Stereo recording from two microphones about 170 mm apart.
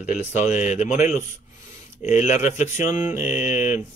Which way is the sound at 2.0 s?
40° left (ahead or behind).